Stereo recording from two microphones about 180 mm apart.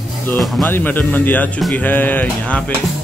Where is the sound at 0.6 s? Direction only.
10° left (ahead or behind).